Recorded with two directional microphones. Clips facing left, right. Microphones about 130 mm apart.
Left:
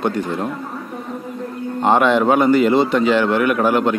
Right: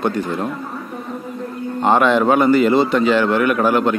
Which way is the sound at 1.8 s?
15° left (ahead or behind).